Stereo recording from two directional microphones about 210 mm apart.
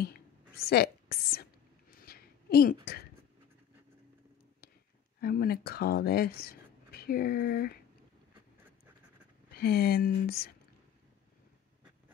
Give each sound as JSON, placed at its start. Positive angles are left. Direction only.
{"t": 0.0, "sound": "a sound", "side_deg": 50}
{"t": 5.2, "sound": "speech", "side_deg": 45}
{"t": 9.5, "sound": "speech", "side_deg": 45}